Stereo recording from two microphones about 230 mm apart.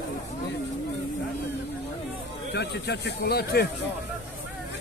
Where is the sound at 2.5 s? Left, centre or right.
Left.